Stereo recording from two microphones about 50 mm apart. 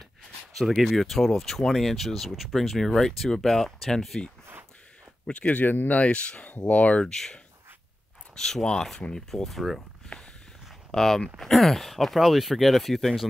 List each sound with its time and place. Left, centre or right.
0.6 s speech: centre
5.2 s speech: left
7.1 s speech: centre
10.9 s speech: centre